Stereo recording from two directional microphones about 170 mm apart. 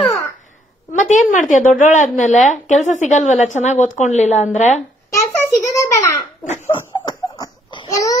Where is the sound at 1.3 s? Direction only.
50° left (ahead or behind).